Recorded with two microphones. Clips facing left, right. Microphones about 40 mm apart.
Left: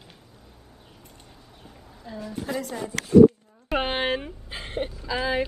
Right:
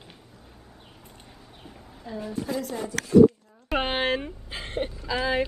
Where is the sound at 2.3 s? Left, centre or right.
Left.